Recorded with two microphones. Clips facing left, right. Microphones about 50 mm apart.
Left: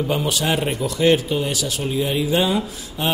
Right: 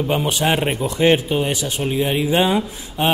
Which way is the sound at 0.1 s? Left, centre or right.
Right.